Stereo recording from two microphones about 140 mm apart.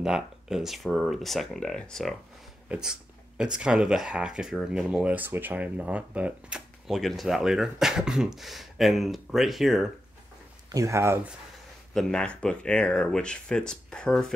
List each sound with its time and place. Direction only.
0.0 s speech: 5° right (ahead or behind)
10.7 s speech: 20° right (ahead or behind)
11.9 s speech: 5° left (ahead or behind)